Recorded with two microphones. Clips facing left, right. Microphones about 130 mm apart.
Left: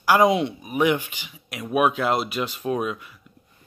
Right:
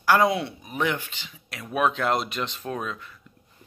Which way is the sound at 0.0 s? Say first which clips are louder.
Left 3 dB; 15° left (ahead or behind).